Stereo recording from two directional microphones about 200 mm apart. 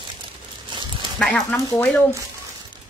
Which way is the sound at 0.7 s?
25° right (ahead or behind).